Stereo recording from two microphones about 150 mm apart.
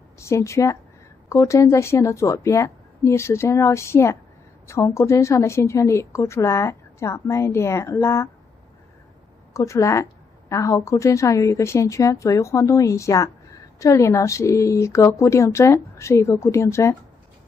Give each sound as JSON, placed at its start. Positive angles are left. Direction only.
{"t": 0.2, "sound": "a woman's voice", "side_deg": 20}
{"t": 9.5, "sound": "a woman's voice", "side_deg": 20}